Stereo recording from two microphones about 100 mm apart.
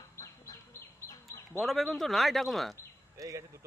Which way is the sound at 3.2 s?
30° right (ahead or behind).